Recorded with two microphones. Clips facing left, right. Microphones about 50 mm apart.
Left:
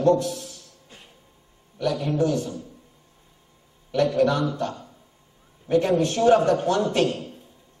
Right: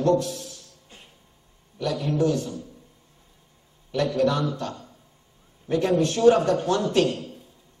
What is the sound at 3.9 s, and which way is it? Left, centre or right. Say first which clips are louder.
A man's voice: left 2 dB; left.